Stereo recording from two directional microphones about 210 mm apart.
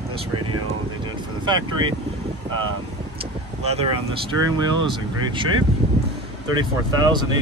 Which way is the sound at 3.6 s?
30° right (ahead or behind).